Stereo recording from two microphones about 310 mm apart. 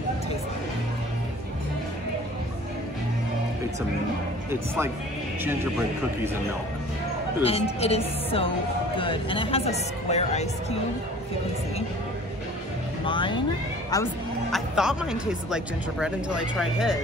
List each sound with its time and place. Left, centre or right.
4.5 s speech: centre
7.4 s speech: centre
13.0 s speech: centre
14.5 s speech: centre